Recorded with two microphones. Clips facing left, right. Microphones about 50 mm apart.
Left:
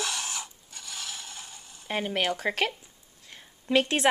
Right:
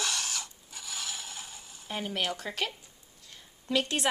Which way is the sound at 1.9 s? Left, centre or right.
Left.